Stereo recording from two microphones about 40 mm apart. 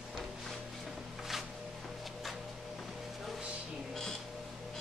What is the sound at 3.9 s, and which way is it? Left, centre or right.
Music, centre.